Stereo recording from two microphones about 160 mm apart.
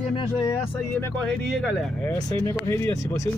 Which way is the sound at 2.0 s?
15° left (ahead or behind).